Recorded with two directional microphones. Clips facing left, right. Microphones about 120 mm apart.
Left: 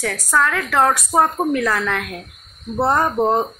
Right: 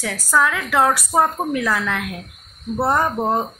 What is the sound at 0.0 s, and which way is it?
A woman's voice, 5° right (ahead or behind).